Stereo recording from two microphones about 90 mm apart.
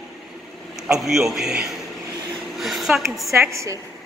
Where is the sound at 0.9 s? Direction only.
5° right (ahead or behind).